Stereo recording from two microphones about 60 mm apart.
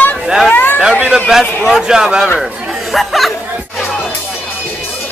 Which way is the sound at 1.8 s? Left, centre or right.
Centre.